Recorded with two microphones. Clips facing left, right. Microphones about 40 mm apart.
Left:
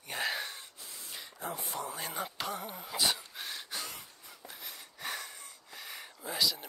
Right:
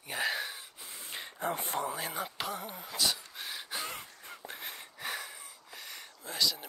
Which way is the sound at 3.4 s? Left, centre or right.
Centre.